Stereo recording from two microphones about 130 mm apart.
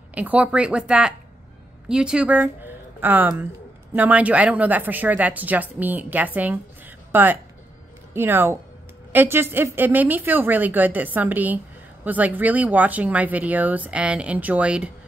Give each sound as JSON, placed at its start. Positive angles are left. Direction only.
{"t": 0.1, "sound": "a woman's voice", "side_deg": -10}